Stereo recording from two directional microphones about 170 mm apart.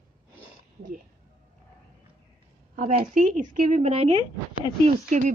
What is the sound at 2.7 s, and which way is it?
Speech, 50° right (ahead or behind).